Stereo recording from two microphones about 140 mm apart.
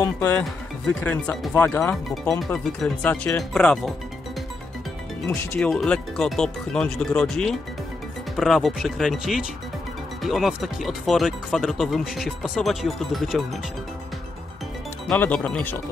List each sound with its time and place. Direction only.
0.0 s speech: 15° left (ahead or behind)
0.4 s speech: 5° left (ahead or behind)
2.0 s speech: centre (ahead or behind)
5.6 s speech: 5° left (ahead or behind)
15.0 s speech: 10° left (ahead or behind)